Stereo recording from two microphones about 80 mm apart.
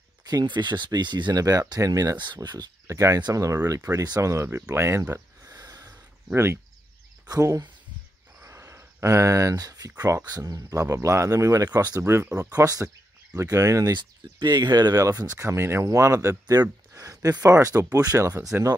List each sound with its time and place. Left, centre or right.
0.2 s speech: right
2.1 s speech: right
2.9 s speech: right
5.1 s a sound: right
6.3 s speech: right
7.2 s speech: right
8.4 s speech: right
12.0 s speech: right
12.4 s speech: right
13.9 s speech: right
15.8 s speech: right